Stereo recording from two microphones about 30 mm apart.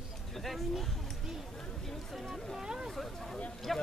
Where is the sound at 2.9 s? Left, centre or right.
Centre.